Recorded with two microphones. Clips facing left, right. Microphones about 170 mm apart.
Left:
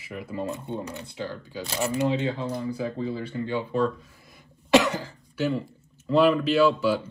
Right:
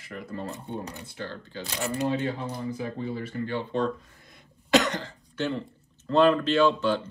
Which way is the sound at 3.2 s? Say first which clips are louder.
Left 2 dB; 20° left (ahead or behind).